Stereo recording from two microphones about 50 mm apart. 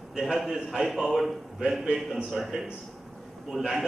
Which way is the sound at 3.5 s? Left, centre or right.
Centre.